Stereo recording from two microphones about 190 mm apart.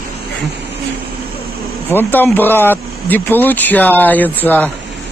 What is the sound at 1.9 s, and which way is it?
Speech, 10° left (ahead or behind).